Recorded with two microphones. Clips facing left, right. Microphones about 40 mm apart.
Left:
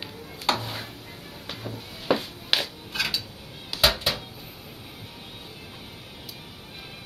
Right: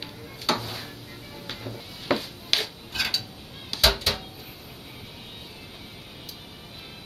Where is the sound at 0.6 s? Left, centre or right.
Left.